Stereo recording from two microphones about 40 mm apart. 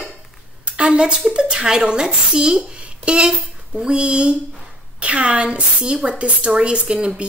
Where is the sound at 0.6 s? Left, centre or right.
Right.